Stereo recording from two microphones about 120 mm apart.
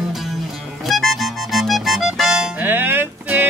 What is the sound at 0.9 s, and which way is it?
Accordion, centre (ahead or behind).